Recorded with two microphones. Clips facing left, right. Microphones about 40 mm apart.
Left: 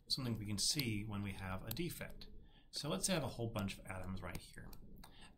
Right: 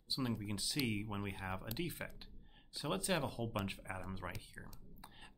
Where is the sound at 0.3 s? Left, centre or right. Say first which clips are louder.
Right 2 dB; centre.